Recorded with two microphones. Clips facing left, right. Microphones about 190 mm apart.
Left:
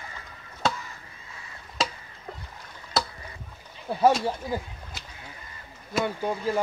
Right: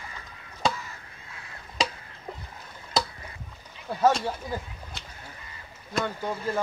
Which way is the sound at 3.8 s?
10° left (ahead or behind).